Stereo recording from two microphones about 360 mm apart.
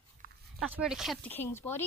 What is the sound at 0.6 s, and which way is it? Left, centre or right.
Speech, centre.